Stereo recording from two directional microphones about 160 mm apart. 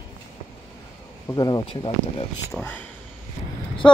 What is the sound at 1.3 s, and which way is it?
Speech, 25° left (ahead or behind).